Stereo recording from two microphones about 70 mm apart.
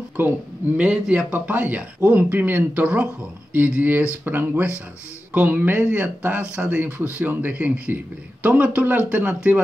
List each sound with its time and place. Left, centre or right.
0.7 s speech: centre
1.3 s a man's voice: right